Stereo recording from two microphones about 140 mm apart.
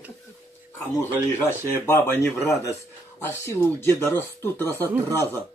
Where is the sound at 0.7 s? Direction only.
15° left (ahead or behind).